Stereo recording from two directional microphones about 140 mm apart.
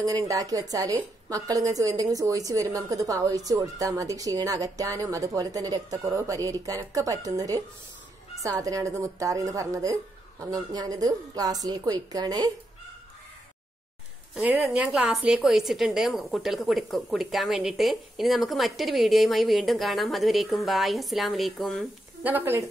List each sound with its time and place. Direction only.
0.0 s a woman's voice: 25° right (ahead or behind)
14.3 s a woman's voice: 5° right (ahead or behind)
22.2 s speech: 15° right (ahead or behind)